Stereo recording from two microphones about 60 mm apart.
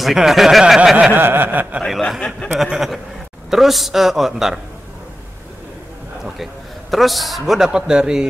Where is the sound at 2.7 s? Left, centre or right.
Centre.